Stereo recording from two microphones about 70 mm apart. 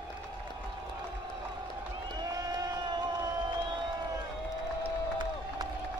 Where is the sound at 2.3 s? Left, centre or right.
Right.